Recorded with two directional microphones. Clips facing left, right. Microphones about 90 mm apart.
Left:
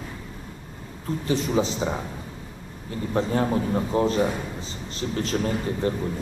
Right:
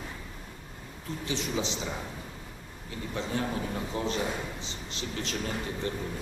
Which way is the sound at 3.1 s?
40° left (ahead or behind).